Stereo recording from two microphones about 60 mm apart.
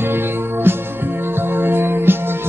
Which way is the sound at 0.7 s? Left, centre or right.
Right.